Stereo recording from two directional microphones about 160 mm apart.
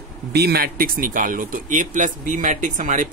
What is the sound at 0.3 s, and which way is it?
Speech, 90° right.